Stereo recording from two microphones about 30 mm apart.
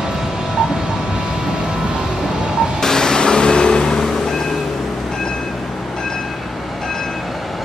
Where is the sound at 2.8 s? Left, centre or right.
Centre.